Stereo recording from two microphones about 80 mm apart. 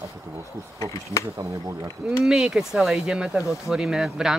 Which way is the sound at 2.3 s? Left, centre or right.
Centre.